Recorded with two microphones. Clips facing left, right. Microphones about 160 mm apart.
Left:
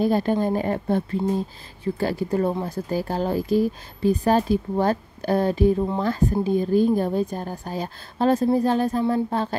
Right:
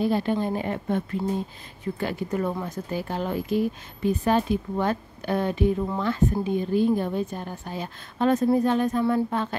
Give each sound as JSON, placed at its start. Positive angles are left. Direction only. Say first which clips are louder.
{"t": 0.0, "sound": "speech", "louder": "left 3 dB", "side_deg": 40}